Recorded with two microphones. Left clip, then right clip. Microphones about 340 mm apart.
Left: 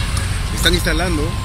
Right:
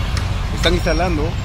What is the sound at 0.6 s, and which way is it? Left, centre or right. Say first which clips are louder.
Speech: even; centre.